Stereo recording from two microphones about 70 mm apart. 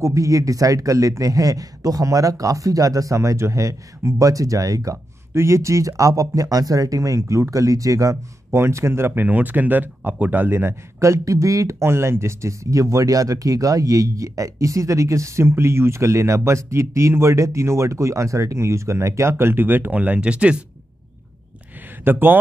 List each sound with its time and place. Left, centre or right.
0.0 s speech: right
5.3 s speech: right
8.5 s speech: right
11.8 s speech: right; by 20.6 s centre
22.0 s a man's voice: right